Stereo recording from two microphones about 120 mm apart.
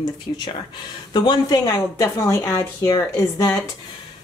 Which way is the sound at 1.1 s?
40° left (ahead or behind).